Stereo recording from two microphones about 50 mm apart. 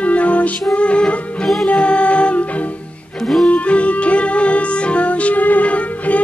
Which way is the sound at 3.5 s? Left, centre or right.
Left.